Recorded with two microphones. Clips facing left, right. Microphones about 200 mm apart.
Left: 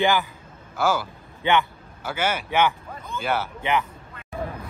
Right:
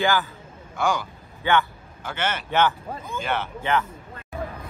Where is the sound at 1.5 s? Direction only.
20° left (ahead or behind).